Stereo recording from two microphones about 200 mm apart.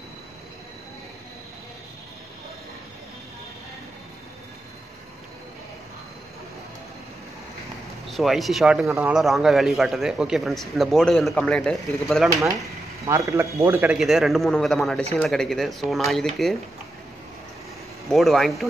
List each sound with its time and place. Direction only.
8.1 s a man's voice: centre (ahead or behind)
12.3 s a man's voice: 15° right (ahead or behind); by 16.5 s centre (ahead or behind)
18.1 s a man's voice: centre (ahead or behind)